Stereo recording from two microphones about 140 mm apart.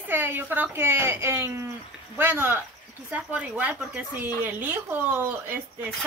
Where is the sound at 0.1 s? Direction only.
15° right (ahead or behind).